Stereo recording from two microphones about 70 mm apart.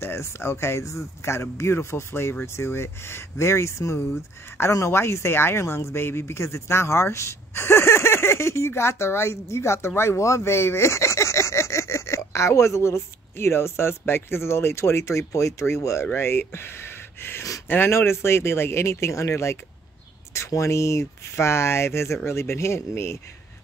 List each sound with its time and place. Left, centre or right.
0.0 s speech: left